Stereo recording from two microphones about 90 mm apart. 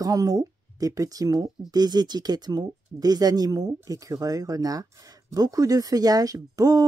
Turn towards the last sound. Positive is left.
turn(degrees=-45)  # may be behind; listen again after turning